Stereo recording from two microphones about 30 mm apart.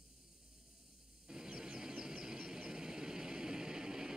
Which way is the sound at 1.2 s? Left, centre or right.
Right.